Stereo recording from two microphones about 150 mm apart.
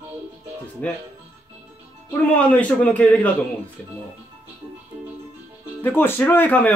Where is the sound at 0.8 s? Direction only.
10° left (ahead or behind).